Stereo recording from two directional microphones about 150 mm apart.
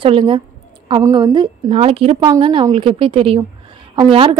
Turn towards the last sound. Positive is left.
turn(degrees=-35)  # may be behind; listen again after turning